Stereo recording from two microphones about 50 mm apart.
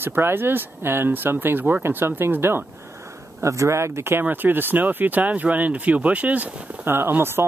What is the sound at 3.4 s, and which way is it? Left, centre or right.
Speech, right.